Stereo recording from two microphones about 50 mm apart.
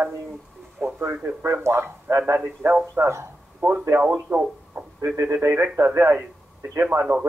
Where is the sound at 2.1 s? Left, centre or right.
Right.